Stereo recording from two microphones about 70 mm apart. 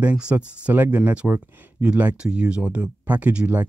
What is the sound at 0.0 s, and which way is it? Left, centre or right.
Speech, centre.